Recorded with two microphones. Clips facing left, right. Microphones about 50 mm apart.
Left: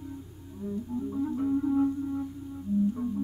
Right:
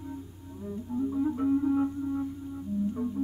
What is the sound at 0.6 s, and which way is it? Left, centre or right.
Music, centre.